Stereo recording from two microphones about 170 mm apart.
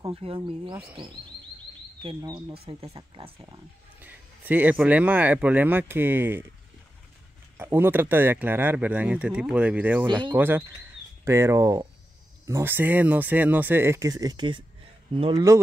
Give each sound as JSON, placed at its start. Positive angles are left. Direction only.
{"t": 0.1, "sound": "speech", "side_deg": -35}
{"t": 2.0, "sound": "speech", "side_deg": -30}
{"t": 4.0, "sound": "speech", "side_deg": -10}
{"t": 7.5, "sound": "speech", "side_deg": -10}
{"t": 10.0, "sound": "speech", "side_deg": -25}
{"t": 10.3, "sound": "speech", "side_deg": -10}